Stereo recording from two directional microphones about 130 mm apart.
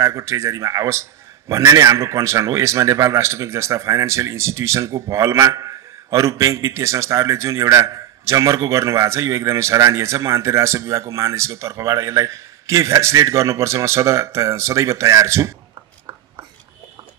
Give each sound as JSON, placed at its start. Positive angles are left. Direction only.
{"t": 0.0, "sound": "speech", "side_deg": -20}